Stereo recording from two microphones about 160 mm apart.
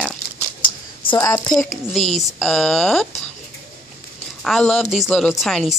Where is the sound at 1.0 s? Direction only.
30° left (ahead or behind).